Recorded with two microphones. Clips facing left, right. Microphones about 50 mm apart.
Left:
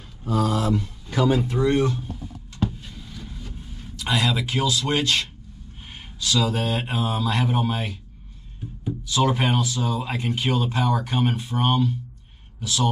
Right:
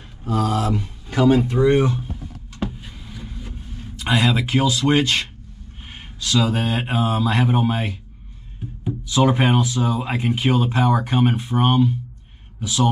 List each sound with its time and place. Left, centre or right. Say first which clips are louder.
0.5 s a sound: right 1 dB; right
1.5 s speech: right 4 dB; centre
2.6 s a sound: left 1 dB; centre
4.0 s mantra: right 4 dB; right
8.8 s speech: right 4 dB; centre
9.8 s mantra: right 4 dB; centre
12.5 s speech: right 4 dB; centre